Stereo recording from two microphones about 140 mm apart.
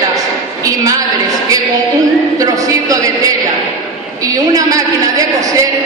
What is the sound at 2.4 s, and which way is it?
A woman's voice, 25° right (ahead or behind).